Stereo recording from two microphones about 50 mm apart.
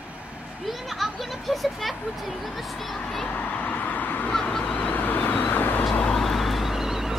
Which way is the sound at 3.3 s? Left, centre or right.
Left.